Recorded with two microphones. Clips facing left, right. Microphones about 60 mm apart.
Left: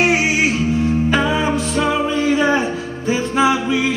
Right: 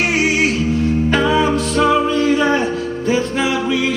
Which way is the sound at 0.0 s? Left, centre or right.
Centre.